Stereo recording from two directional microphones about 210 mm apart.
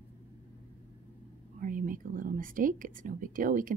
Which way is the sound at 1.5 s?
40° right (ahead or behind).